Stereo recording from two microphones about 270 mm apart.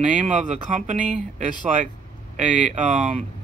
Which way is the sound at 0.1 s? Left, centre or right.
Right.